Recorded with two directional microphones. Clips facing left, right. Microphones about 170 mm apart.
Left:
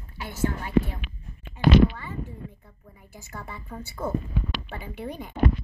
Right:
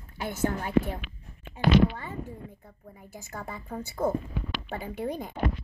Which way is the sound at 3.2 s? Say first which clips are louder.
Right 1 dB; 45° right (ahead or behind).